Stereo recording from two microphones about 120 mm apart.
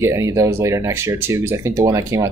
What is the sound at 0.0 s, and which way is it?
Speech, 25° right (ahead or behind).